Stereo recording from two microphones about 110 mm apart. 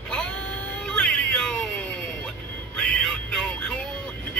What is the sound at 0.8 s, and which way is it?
Music, 10° left (ahead or behind).